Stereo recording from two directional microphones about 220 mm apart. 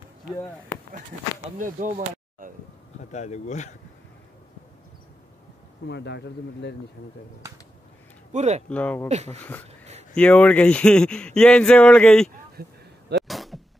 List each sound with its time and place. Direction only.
1.6 s a sound: 35° right (ahead or behind)
3.0 s speech: 30° left (ahead or behind)
5.9 s speech: 50° left (ahead or behind)
8.3 s speech: 30° right (ahead or behind)
8.6 s speech: 5° left (ahead or behind)
9.1 s speech: 30° right (ahead or behind)
10.1 s speech: 5° left (ahead or behind)
12.6 s speech: 45° right (ahead or behind)
13.3 s a sound: centre (ahead or behind)